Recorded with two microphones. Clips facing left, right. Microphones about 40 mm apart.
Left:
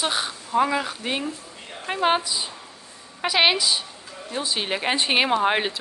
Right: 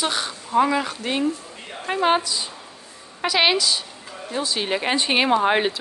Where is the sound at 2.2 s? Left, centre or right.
Centre.